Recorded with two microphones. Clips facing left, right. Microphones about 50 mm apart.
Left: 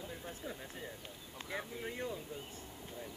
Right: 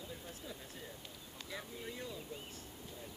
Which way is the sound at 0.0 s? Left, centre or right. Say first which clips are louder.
Left 4 dB; left.